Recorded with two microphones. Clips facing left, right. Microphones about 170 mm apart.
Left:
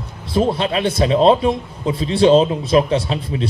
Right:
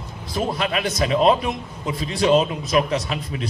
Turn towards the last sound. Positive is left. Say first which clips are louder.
# left 6 dB
turn(degrees=30)  # may be behind; listen again after turning